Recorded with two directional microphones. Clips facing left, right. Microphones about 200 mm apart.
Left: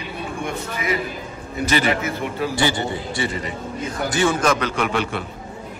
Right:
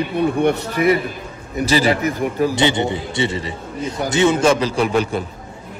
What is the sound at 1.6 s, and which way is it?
Speech, 35° right (ahead or behind).